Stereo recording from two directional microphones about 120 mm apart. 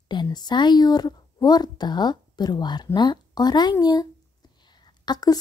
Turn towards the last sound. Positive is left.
turn(degrees=35)  # may be behind; listen again after turning